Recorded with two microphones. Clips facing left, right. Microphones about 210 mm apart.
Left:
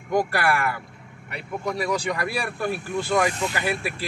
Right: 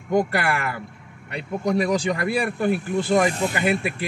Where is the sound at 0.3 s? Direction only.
20° right (ahead or behind).